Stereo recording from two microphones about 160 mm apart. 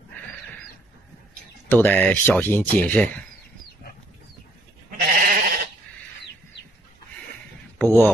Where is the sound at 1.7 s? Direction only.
10° left (ahead or behind).